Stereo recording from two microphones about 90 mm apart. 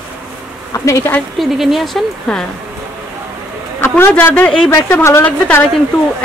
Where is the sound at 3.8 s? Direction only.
25° left (ahead or behind).